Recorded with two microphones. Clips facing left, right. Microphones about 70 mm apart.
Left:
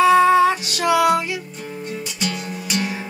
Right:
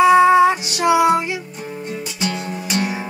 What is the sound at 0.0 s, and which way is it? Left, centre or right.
Music, centre.